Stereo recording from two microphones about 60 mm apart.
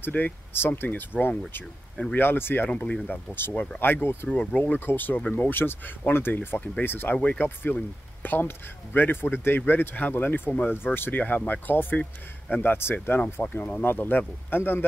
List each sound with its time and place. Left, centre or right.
0.0 s speech: left
2.7 s speech: left
3.3 s speech: left
4.3 s speech: centre
4.7 s speech: left
7.2 s speech: left